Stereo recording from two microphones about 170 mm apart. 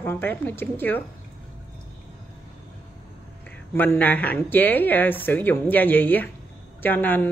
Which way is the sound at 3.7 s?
10° left (ahead or behind).